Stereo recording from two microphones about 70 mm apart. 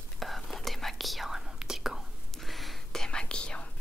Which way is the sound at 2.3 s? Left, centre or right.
Centre.